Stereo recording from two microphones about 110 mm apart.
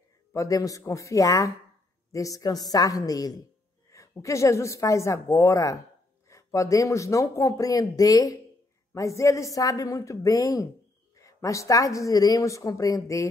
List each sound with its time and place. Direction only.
0.3 s speech: 30° left (ahead or behind)